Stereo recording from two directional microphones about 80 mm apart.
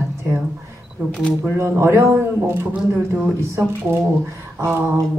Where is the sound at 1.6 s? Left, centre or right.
Right.